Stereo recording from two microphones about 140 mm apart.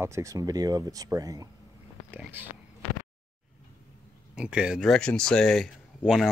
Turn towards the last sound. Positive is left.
turn(degrees=0)  # may be behind; listen again after turning